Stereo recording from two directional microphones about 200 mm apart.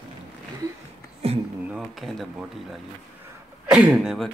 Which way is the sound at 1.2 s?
30° right (ahead or behind).